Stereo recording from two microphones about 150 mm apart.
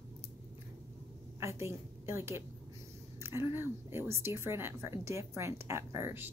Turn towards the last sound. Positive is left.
turn(degrees=-15)  # may be behind; listen again after turning